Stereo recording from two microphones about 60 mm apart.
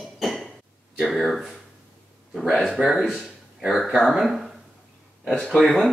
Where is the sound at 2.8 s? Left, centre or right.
Centre.